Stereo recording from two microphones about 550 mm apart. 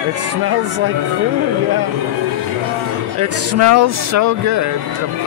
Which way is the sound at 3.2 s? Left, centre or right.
Right.